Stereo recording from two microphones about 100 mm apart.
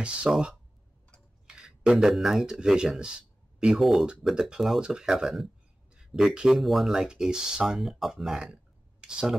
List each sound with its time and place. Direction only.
0.0 s speech: 10° right (ahead or behind)